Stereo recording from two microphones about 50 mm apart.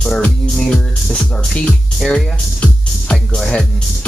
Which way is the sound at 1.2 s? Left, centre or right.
Left.